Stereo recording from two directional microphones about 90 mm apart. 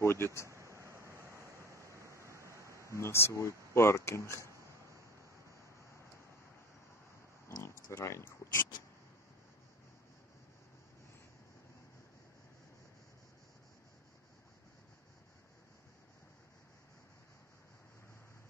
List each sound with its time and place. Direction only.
0.0 s speech: 30° left (ahead or behind)
0.5 s vehicle: 35° right (ahead or behind)
1.3 s waves: 30° right (ahead or behind)
2.0 s a sound: 30° left (ahead or behind)
7.4 s oink: 30° left (ahead or behind)